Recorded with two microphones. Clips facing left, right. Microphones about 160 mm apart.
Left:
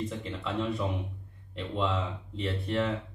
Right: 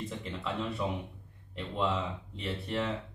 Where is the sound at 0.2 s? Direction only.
Centre (ahead or behind).